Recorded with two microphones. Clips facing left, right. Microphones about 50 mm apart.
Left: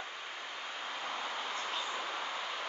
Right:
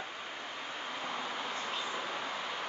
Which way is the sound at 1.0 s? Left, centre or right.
Centre.